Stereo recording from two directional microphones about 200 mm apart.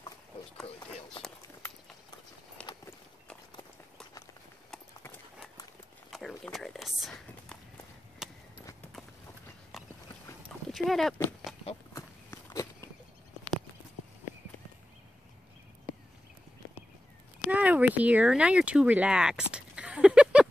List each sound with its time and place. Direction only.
0.7 s run: 25° left (ahead or behind)
2.6 s walk: 5° left (ahead or behind)
4.6 s horse: 5° left (ahead or behind)
8.2 s a sound: centre (ahead or behind)
10.7 s speech: centre (ahead or behind)
11.9 s walk: 15° left (ahead or behind)
17.5 s a sound: 5° right (ahead or behind)